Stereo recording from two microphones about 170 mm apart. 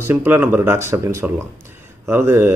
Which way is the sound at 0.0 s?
10° right (ahead or behind).